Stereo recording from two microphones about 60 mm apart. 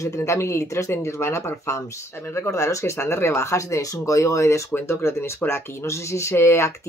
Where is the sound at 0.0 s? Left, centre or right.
Left.